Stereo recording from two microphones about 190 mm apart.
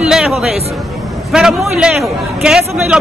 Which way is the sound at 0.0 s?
5° right (ahead or behind).